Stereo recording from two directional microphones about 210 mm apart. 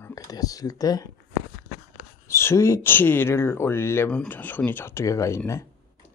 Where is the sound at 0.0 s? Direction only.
15° left (ahead or behind).